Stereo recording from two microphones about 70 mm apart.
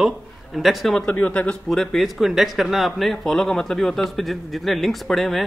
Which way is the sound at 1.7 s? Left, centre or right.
Centre.